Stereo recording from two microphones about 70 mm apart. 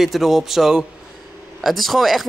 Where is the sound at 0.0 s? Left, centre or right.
Centre.